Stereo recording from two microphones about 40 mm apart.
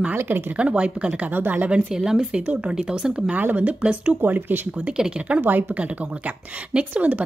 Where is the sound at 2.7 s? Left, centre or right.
Centre.